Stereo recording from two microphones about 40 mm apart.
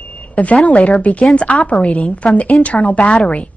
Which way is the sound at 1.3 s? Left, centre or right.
Left.